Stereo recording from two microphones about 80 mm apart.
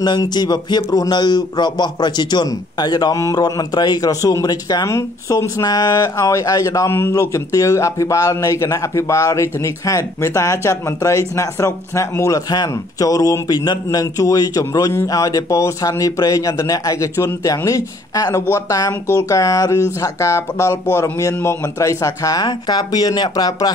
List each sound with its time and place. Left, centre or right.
0.0 s a man's voice: left
4.8 s a man's voice: left
5.6 s a man's voice: left
6.9 s a man's voice: left
7.2 s a man's voice: left
12.4 s a man's voice: left
22.4 s a man's voice: left